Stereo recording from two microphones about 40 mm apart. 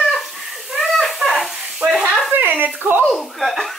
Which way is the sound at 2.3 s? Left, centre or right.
Right.